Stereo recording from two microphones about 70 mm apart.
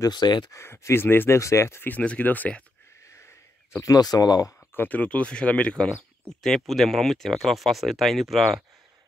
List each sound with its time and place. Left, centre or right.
0.0 s speech: left
0.5 s speech: left
1.4 s speech: left
1.9 s speech: left
3.0 s a sound: left
3.8 s speech: left
4.7 s speech: left
6.2 s speech: centre